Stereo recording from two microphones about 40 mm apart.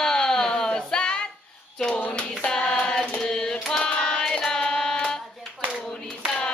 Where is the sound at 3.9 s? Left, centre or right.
Left.